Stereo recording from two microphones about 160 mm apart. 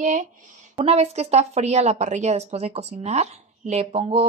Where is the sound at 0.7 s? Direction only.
40° right (ahead or behind).